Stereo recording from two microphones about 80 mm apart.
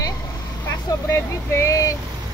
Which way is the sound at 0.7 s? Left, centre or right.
Left.